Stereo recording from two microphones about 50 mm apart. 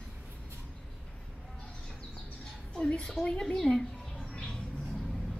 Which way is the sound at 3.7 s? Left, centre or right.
Centre.